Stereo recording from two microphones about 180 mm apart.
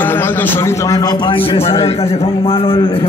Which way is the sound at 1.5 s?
35° left (ahead or behind).